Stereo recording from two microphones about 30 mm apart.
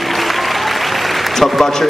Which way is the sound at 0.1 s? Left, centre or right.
Centre.